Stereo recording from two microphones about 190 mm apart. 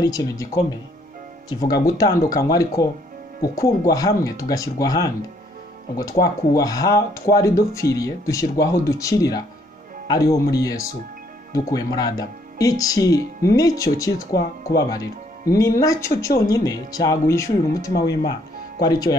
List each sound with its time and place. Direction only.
0.0 s speech: 20° left (ahead or behind)
1.6 s speech: 20° left (ahead or behind)
6.2 s speech: 20° left (ahead or behind)
14.1 s speech: 60° left (ahead or behind)
14.8 s speech: 20° left (ahead or behind)